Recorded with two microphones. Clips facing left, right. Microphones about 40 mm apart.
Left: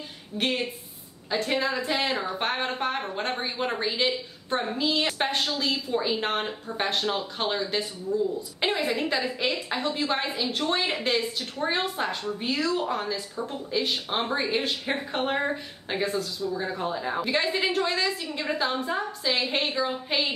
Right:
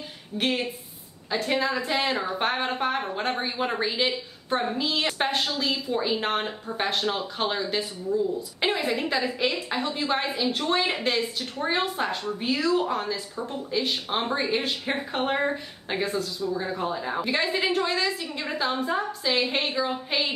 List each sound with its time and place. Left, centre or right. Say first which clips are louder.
0.4 s speech: right 1 dB; centre